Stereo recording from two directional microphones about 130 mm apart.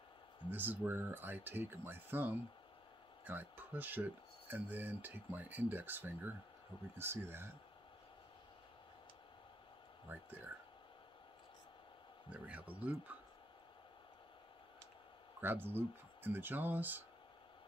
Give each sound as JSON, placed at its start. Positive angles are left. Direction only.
{"t": 0.5, "sound": "speech", "side_deg": -15}
{"t": 10.0, "sound": "speech", "side_deg": -15}
{"t": 12.3, "sound": "speech", "side_deg": -10}
{"t": 15.4, "sound": "speech", "side_deg": -15}